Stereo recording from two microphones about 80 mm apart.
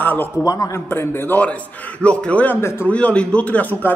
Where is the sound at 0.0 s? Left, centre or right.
Left.